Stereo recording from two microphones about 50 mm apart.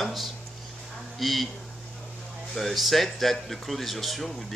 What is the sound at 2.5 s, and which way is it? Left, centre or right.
Speech, centre.